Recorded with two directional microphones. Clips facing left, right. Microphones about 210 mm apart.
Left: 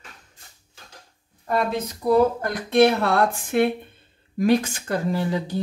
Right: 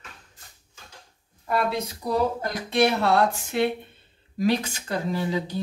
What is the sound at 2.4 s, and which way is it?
Speech, 55° left (ahead or behind).